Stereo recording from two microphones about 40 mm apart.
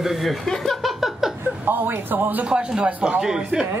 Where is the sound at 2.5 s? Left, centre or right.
Right.